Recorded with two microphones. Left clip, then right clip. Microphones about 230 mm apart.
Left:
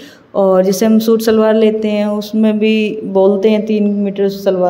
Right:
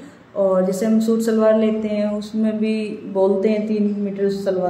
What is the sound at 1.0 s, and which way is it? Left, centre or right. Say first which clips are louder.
Speech: left 5 dB; left.